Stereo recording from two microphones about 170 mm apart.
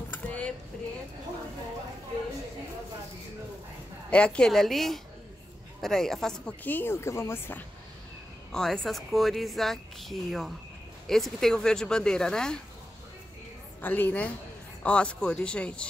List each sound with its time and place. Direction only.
0.1 s a sound: 5° left (ahead or behind)
4.1 s speech: 5° left (ahead or behind)
13.7 s speech: 10° left (ahead or behind)